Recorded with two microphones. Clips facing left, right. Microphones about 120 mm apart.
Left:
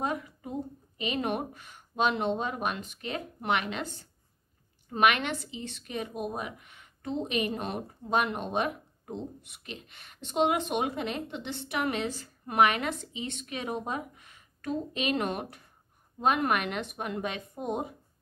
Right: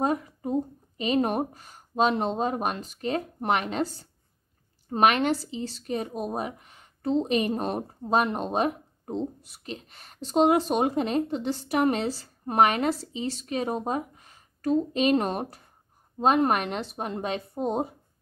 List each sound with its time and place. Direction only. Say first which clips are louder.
0.0 s a woman's voice: right 6 dB; 35° right (ahead or behind)